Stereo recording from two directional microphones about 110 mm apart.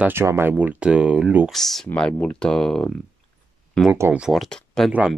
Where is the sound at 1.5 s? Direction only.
5° left (ahead or behind).